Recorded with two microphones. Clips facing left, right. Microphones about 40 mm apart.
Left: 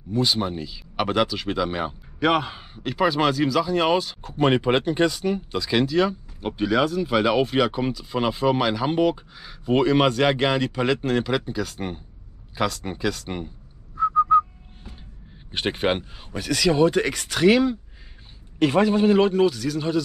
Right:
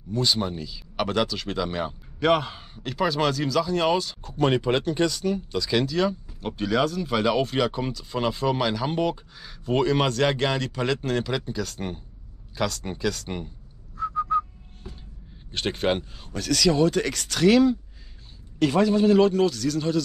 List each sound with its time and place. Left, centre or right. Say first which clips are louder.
0.1 s speech: left 2 dB; centre
13.9 s whistling: left 7 dB; centre
15.5 s speech: left 1 dB; centre